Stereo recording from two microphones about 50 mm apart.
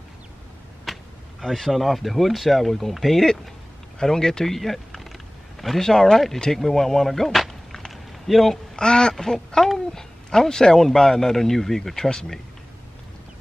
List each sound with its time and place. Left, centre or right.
0.9 s a sound: centre
1.4 s speech: centre
8.7 s speech: centre